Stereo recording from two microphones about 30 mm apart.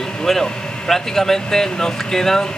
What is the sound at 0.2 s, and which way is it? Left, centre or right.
Speech, centre.